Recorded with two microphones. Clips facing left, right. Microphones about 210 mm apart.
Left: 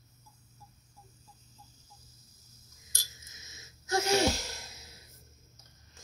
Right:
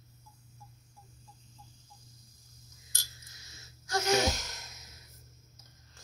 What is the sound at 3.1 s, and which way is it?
Sneeze, 20° left (ahead or behind).